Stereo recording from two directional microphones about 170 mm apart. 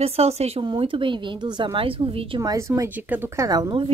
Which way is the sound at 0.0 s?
35° right (ahead or behind).